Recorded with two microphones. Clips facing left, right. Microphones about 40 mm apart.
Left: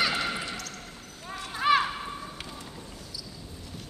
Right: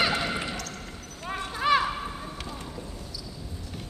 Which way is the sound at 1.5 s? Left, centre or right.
Centre.